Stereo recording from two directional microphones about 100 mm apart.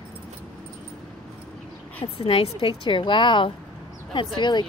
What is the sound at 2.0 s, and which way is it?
A woman's voice, 75° left (ahead or behind).